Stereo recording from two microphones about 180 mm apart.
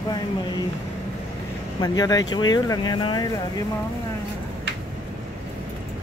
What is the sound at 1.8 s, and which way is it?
Speech, 20° left (ahead or behind).